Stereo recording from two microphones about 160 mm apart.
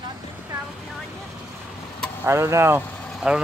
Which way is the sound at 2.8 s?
10° left (ahead or behind).